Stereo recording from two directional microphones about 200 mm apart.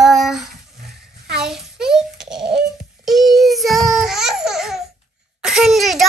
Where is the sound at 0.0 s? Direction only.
Centre (ahead or behind).